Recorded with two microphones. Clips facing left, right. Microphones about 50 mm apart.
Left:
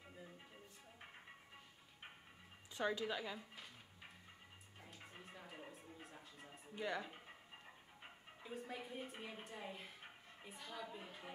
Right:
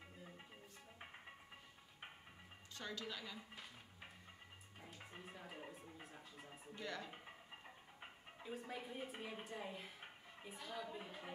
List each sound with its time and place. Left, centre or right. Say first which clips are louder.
2.7 s speech: left 8 dB; centre
3.3 s speech: even; centre
4.7 s music: right 2 dB; centre
6.7 s speech: left 5 dB; centre
8.4 s a woman's voice: even; centre